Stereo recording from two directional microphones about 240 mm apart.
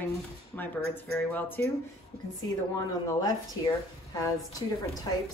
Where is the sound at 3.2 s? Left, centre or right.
Centre.